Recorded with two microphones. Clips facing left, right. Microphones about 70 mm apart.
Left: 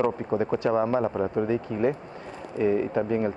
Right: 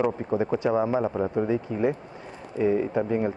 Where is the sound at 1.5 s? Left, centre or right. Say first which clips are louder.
Even; centre.